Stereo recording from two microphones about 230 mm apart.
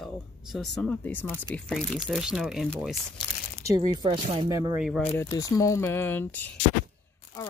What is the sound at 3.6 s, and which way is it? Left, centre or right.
Speech, centre.